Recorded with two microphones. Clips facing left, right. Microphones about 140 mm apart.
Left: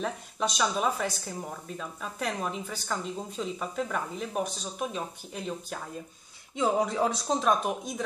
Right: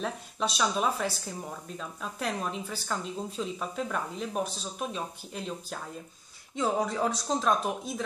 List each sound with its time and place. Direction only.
0.0 s speech: centre (ahead or behind)
6.8 s speech: centre (ahead or behind)